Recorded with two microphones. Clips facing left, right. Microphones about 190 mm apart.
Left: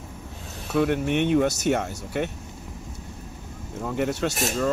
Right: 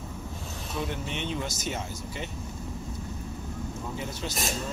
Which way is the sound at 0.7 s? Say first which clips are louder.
Left 12 dB; 60° left (ahead or behind).